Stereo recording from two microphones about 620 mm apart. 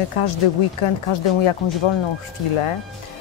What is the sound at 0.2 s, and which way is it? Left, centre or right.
Speech, left.